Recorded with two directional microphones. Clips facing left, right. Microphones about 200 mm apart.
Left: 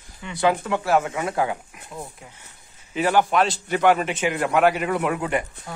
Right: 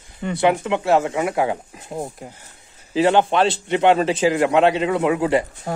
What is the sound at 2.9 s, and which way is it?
Speech, 25° right (ahead or behind).